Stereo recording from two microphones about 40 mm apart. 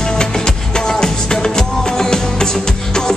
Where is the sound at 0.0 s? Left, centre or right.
Centre.